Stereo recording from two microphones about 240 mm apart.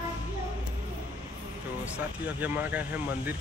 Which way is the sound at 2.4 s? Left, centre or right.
Centre.